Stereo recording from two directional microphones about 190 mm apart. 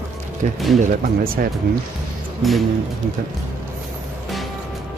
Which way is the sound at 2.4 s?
Centre (ahead or behind).